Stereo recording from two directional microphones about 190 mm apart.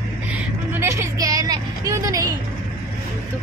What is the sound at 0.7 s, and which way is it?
Vehicle, 15° right (ahead or behind).